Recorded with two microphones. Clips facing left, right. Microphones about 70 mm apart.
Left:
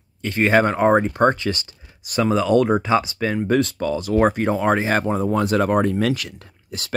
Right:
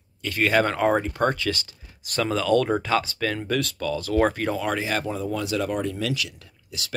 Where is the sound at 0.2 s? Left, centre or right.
Left.